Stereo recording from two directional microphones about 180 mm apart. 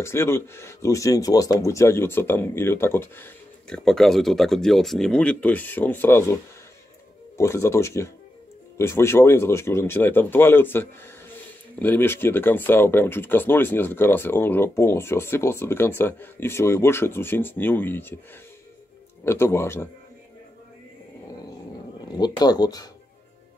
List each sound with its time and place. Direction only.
0.0 s speech: 15° left (ahead or behind)
19.2 s speech: 15° left (ahead or behind)
22.0 s speech: 20° left (ahead or behind)